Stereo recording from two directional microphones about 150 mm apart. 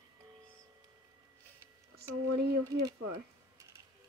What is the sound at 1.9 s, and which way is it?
Speech, 90° right.